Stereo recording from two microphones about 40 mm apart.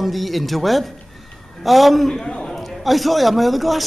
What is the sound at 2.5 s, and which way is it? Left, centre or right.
A man's voice, centre.